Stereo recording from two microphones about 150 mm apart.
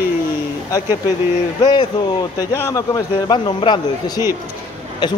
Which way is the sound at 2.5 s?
20° left (ahead or behind).